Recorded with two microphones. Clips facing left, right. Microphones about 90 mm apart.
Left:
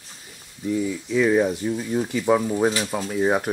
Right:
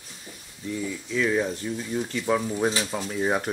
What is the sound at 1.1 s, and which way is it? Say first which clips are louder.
Speech: left 6 dB; 15° left (ahead or behind).